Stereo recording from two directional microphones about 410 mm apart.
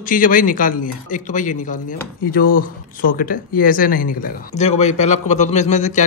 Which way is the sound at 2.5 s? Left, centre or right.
Centre.